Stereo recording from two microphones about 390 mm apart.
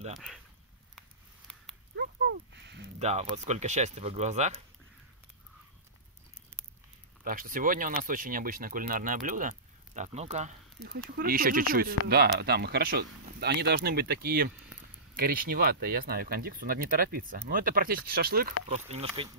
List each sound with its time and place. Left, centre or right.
0.1 s speech: centre
2.0 s speech: right
7.2 s speech: right